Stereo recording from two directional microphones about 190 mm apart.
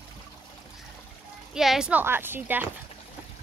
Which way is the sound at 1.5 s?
Centre (ahead or behind).